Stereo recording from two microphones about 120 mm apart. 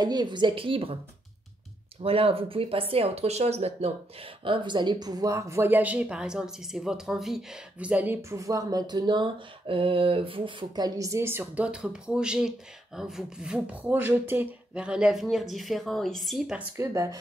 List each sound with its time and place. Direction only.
0.0 s speech: 35° right (ahead or behind)
2.0 s speech: 55° right (ahead or behind)
11.0 s speech: 25° right (ahead or behind); by 16.6 s 5° right (ahead or behind)
16.7 s speech: 25° right (ahead or behind)